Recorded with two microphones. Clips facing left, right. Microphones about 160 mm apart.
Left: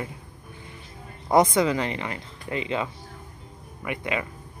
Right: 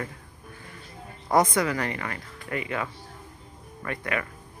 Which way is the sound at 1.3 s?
25° left (ahead or behind).